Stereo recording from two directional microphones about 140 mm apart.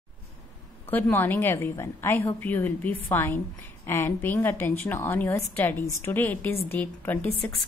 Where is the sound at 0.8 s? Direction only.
15° left (ahead or behind).